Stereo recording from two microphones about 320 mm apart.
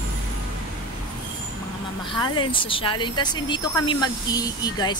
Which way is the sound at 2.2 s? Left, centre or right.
Centre.